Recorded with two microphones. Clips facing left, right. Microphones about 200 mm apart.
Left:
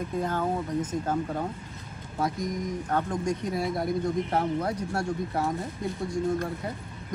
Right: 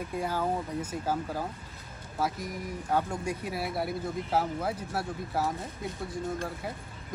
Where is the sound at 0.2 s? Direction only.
10° right (ahead or behind).